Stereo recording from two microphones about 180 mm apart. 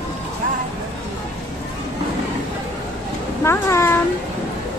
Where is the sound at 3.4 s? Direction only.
15° left (ahead or behind).